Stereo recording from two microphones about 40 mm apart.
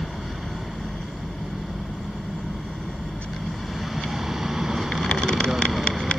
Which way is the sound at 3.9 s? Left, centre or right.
Centre.